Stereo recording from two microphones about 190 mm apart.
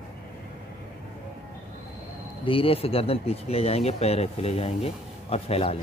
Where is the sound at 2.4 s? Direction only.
30° left (ahead or behind).